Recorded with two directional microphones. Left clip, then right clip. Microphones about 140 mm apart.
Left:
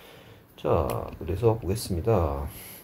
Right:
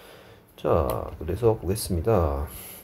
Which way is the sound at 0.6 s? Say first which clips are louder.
Right 2 dB; 30° right (ahead or behind).